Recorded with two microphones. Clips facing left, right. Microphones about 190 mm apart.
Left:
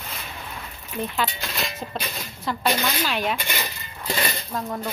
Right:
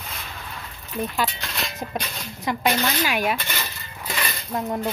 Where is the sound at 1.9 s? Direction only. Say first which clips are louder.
Right 2 dB; 15° right (ahead or behind).